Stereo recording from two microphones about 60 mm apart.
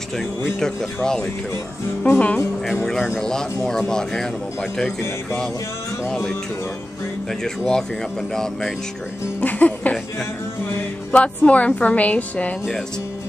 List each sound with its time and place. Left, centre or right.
0.6 s speech: centre
2.0 s a woman's voice: left
2.6 s speech: centre
7.4 s speech: centre
9.4 s music: left
11.1 s a woman's voice: left